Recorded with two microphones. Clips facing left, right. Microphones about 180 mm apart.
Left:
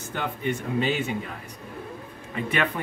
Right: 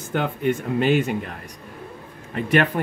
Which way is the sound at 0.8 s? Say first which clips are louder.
Right 10 dB; 85° right.